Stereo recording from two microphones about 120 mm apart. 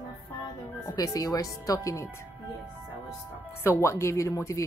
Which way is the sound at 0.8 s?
30° left (ahead or behind).